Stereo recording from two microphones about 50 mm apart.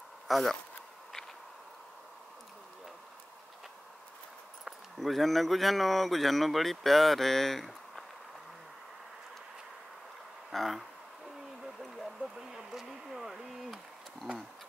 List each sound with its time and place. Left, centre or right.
0.3 s speech: centre
4.6 s speech: centre
10.5 s speech: centre
12.2 s a sound: centre